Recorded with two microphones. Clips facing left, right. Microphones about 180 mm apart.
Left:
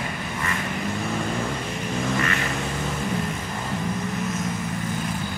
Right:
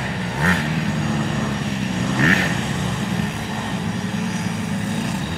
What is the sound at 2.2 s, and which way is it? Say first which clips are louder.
Vehicle: right 7 dB; 70° right (ahead or behind).